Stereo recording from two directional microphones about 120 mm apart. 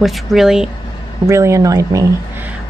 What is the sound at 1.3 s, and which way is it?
Speech, 25° right (ahead or behind).